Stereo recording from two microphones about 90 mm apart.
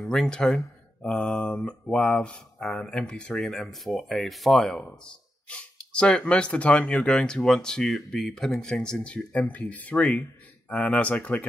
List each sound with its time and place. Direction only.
0.0 s speech: 5° left (ahead or behind)